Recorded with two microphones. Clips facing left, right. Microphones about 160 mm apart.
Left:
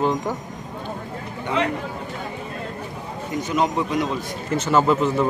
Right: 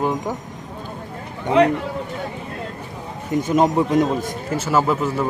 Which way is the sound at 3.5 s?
45° right (ahead or behind).